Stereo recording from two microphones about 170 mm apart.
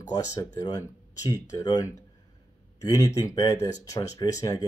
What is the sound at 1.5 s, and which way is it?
Speech, 25° left (ahead or behind).